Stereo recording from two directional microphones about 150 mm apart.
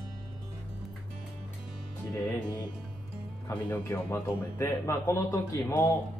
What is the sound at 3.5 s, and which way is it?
Speech, 15° left (ahead or behind).